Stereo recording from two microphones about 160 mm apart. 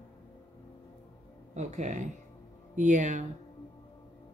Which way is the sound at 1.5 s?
50° right (ahead or behind).